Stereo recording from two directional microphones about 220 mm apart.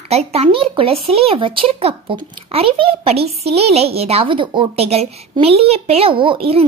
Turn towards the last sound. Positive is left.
turn(degrees=-25)  # may be behind; listen again after turning